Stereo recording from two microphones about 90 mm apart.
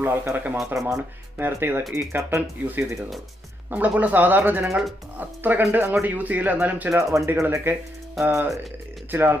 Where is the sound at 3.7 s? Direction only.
15° right (ahead or behind).